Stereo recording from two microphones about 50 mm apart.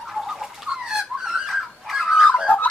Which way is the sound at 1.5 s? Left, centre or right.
Centre.